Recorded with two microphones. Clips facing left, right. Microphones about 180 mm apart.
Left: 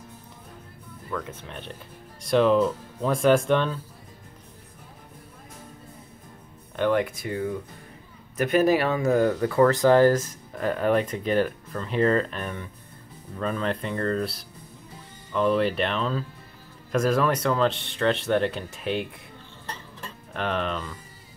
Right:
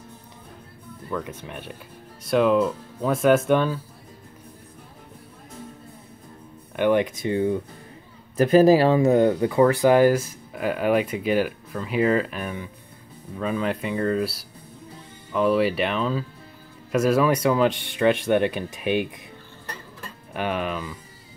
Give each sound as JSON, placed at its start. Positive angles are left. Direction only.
{"t": 1.1, "sound": "speech", "side_deg": -10}
{"t": 6.8, "sound": "speech", "side_deg": -20}
{"t": 20.3, "sound": "speech", "side_deg": -10}